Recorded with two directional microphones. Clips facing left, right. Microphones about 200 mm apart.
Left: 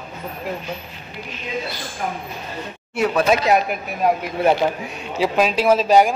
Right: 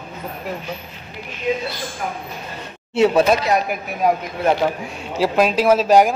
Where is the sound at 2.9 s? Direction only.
25° right (ahead or behind).